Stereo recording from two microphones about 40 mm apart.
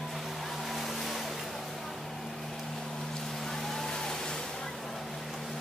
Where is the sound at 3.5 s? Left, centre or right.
Centre.